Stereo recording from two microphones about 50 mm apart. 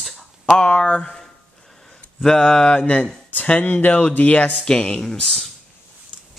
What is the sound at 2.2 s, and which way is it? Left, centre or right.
Speech, centre.